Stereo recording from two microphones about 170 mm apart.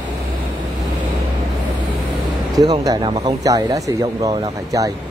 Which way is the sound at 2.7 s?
25° right (ahead or behind).